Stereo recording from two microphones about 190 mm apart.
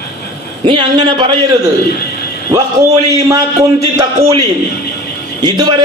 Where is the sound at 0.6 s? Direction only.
25° right (ahead or behind).